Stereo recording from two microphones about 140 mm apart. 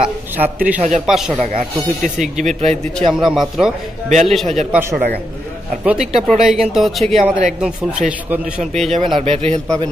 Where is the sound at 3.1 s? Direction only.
Centre (ahead or behind).